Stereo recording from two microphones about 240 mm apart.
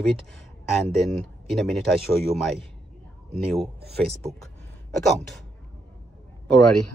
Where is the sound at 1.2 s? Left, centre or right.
Centre.